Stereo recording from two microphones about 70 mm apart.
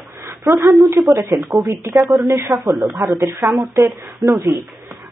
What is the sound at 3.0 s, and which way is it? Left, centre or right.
Speech, right.